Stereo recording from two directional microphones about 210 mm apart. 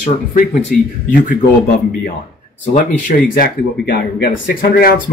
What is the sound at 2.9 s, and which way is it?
Speech, 40° left (ahead or behind).